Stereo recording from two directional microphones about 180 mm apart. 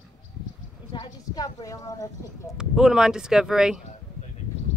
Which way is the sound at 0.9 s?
20° left (ahead or behind).